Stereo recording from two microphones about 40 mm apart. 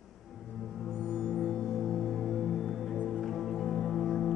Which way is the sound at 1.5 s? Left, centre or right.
Centre.